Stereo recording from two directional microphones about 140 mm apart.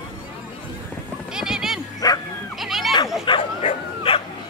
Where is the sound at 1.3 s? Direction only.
5° right (ahead or behind).